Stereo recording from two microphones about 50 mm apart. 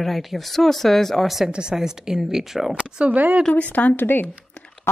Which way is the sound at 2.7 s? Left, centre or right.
Right.